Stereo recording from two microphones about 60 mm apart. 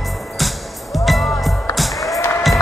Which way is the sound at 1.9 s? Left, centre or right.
Left.